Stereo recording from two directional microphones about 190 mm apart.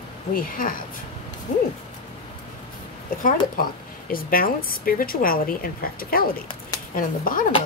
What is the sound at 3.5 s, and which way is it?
A woman's voice, 50° left (ahead or behind).